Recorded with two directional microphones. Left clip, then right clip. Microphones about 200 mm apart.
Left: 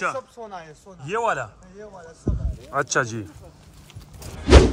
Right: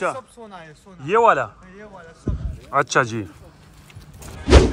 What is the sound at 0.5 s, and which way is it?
Speech, 30° left (ahead or behind).